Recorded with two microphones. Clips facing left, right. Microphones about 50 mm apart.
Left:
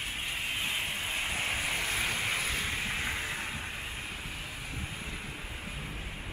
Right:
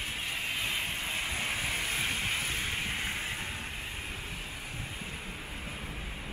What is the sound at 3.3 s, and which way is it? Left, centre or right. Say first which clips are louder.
Vehicle: left 1 dB; centre.